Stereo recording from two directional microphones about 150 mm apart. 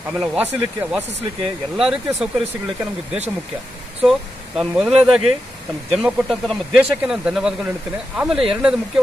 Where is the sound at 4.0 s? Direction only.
Centre (ahead or behind).